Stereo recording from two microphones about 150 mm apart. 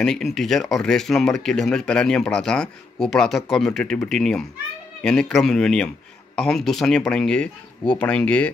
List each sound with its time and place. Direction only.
0.0 s speech: 5° left (ahead or behind)